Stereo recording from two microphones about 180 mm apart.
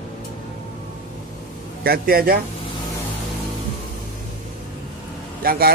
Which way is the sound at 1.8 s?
55° right (ahead or behind).